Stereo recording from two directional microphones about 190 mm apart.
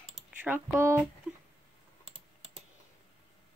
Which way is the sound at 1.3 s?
5° right (ahead or behind).